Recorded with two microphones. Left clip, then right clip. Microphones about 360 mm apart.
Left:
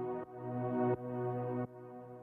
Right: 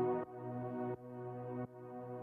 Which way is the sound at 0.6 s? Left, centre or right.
Left.